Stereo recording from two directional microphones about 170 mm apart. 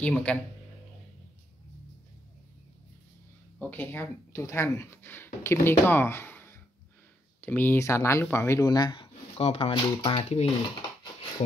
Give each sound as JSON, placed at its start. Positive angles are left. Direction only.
{"t": 0.0, "sound": "speech", "side_deg": 5}
{"t": 3.5, "sound": "speech", "side_deg": 10}